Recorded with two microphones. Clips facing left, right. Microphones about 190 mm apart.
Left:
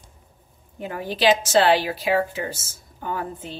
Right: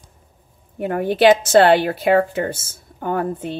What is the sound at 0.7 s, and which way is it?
A woman's voice, 55° right (ahead or behind).